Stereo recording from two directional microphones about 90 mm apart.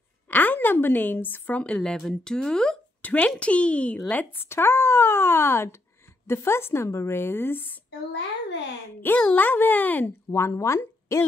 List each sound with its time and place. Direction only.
0.3 s a woman's voice: 20° left (ahead or behind)
3.0 s a woman's voice: 20° left (ahead or behind)
9.2 s speech: 15° left (ahead or behind)
10.0 s speech: 30° left (ahead or behind)